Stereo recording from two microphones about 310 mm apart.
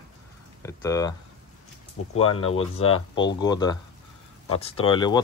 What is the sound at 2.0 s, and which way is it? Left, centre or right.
Speech, left.